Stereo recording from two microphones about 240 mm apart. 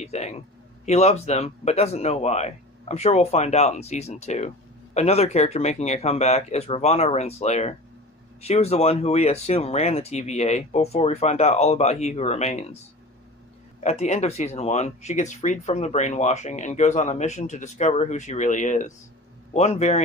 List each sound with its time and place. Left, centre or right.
0.0 s speech: left
13.8 s speech: left